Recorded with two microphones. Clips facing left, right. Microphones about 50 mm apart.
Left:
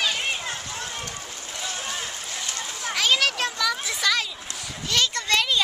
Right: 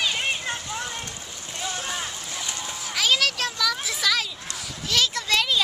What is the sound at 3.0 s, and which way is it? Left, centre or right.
Children playing, centre.